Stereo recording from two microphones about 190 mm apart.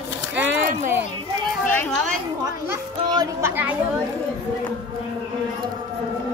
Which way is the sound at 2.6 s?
15° right (ahead or behind).